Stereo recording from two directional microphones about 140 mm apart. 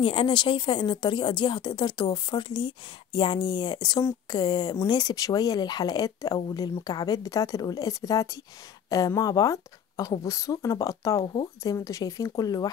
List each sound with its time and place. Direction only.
0.0 s a woman's voice: 40° left (ahead or behind)